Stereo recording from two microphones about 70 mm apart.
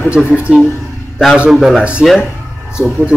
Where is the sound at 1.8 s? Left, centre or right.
Centre.